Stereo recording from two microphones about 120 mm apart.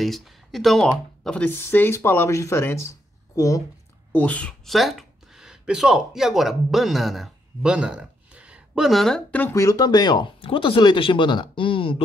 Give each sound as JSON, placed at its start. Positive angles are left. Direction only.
{"t": 0.0, "sound": "speech", "side_deg": 0}
{"t": 4.1, "sound": "speech", "side_deg": 10}